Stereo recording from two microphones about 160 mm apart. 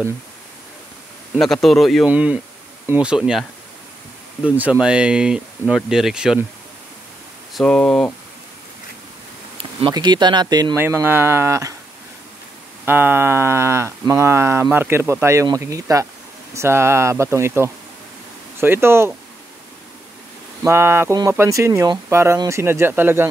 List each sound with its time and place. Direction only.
1.4 s speech: centre (ahead or behind)
2.0 s speech: 10° right (ahead or behind)
4.5 s speech: 10° right (ahead or behind)
7.5 s speech: 5° left (ahead or behind)
9.6 s speech: 30° right (ahead or behind)
12.8 s speech: 10° right (ahead or behind)
20.6 s speech: 15° right (ahead or behind)